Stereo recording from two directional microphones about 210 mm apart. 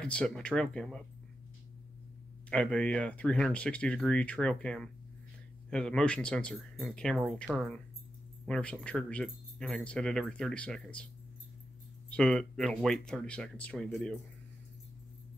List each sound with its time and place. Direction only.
0.0 s speech: 5° left (ahead or behind)
2.5 s speech: 5° left (ahead or behind)
12.1 s speech: 5° left (ahead or behind)